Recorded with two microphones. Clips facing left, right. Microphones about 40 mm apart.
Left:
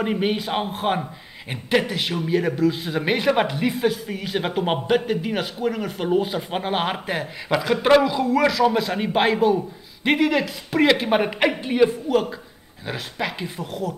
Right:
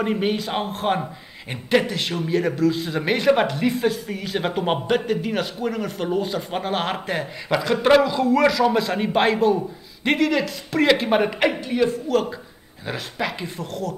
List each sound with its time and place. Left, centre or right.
0.0 s speech: centre
11.6 s a woman's voice: left
12.1 s speech: centre